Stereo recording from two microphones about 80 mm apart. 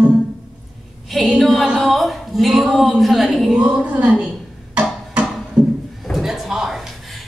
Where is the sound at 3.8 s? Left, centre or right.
Centre.